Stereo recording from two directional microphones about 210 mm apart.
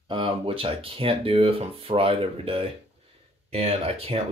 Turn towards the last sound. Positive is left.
turn(degrees=-30)  # may be behind; listen again after turning